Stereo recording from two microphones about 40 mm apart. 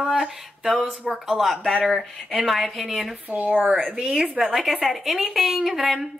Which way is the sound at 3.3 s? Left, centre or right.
Right.